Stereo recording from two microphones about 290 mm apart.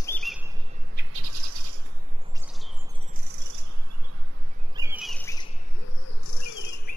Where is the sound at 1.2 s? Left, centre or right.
Right.